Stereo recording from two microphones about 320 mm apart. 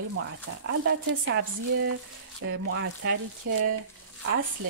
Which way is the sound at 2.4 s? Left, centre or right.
Right.